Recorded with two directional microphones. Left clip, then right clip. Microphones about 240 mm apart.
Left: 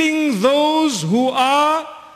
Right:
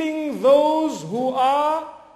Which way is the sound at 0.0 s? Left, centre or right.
Left.